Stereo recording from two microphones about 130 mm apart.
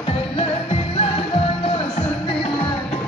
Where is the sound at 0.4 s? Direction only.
45° left (ahead or behind).